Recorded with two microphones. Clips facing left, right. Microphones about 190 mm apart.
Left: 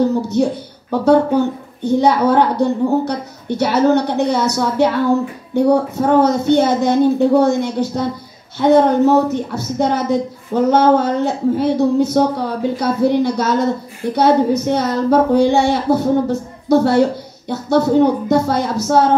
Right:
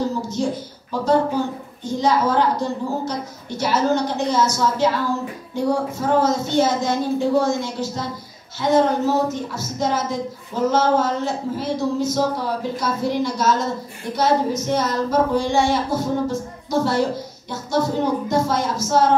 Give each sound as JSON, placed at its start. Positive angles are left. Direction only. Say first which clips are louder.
{"t": 0.1, "sound": "a woman's voice", "louder": "left 7 dB", "side_deg": 60}